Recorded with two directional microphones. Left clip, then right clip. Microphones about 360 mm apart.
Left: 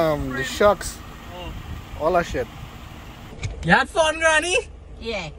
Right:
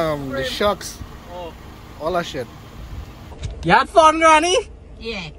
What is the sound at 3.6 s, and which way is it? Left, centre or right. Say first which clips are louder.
A man's voice: right 6 dB; centre.